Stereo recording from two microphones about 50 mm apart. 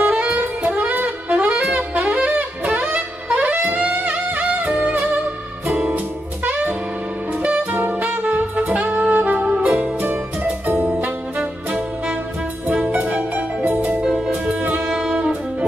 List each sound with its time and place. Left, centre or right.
0.0 s saxophone: right
2.0 s wind instrument: right
2.8 s music: centre
3.5 s saxophone: right
3.8 s music: right
7.4 s saxophone: right
10.0 s music: right
12.6 s music: right
14.9 s saxophone: centre